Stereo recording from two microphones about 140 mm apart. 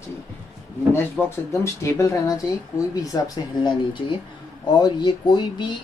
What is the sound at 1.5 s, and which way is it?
Speech, 20° left (ahead or behind).